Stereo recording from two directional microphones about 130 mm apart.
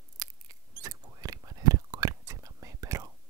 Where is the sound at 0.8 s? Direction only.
30° right (ahead or behind).